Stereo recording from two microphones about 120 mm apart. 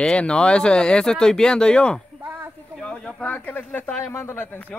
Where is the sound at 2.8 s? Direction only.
5° left (ahead or behind).